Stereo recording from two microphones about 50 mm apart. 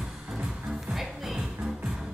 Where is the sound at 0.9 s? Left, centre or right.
Centre.